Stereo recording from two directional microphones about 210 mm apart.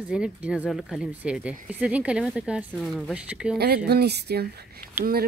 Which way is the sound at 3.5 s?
50° right (ahead or behind).